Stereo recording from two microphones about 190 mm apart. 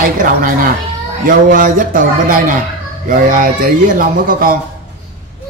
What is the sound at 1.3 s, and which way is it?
A man's voice, 45° right (ahead or behind).